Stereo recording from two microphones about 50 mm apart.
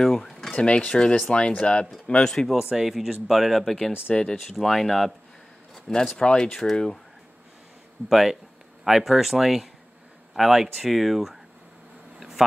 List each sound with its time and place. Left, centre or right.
0.0 s dishes: centre
0.5 s speech: left
2.2 s speech: centre
2.5 s speech: centre
4.1 s speech: centre
4.5 s speech: centre
6.1 s speech: centre
8.1 s speech: centre
12.2 s a sound: centre